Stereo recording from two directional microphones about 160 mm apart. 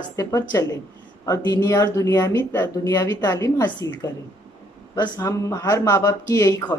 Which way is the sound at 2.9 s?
25° left (ahead or behind).